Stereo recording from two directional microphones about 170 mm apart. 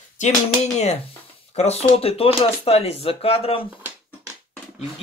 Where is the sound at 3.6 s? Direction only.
10° right (ahead or behind).